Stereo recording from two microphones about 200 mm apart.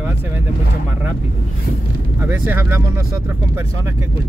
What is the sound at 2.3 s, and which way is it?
Speech, 10° right (ahead or behind).